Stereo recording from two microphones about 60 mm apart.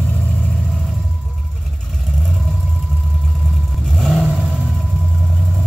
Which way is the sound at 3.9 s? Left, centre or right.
Centre.